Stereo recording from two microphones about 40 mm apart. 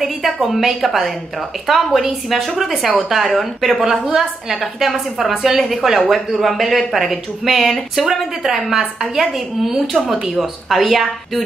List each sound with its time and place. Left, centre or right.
0.0 s a woman's voice: centre
3.8 s a woman's voice: centre